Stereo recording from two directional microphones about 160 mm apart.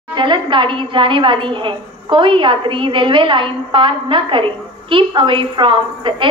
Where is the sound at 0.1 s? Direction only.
30° right (ahead or behind).